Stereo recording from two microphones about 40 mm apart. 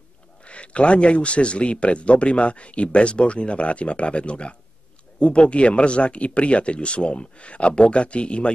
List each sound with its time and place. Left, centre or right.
0.5 s speech: left